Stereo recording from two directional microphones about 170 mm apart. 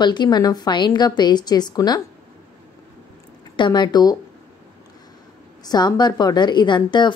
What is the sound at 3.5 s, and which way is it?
Speech, 25° left (ahead or behind).